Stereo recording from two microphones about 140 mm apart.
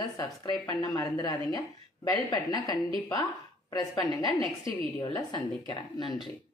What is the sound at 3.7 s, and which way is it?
A woman's voice, 25° left (ahead or behind).